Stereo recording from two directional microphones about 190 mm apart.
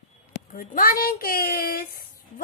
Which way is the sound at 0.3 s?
50° left (ahead or behind).